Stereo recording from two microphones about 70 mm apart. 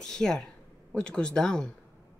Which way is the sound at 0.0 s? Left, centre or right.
Centre.